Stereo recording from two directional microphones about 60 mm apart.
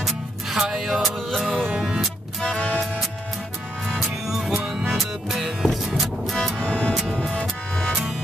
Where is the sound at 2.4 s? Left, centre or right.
Centre.